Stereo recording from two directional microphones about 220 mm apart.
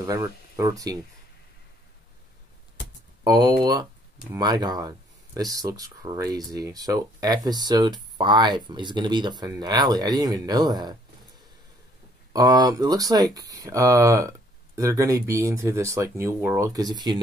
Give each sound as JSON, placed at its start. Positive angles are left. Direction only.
{"t": 0.0, "sound": "speech", "side_deg": -15}
{"t": 3.3, "sound": "speech", "side_deg": -15}
{"t": 12.3, "sound": "speech", "side_deg": -15}